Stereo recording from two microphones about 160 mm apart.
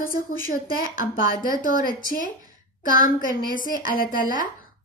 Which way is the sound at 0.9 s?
60° left (ahead or behind).